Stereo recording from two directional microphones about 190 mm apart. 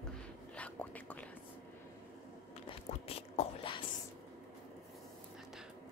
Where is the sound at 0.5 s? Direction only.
10° left (ahead or behind).